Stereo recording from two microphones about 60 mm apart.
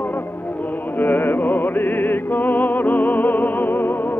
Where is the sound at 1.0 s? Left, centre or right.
Left.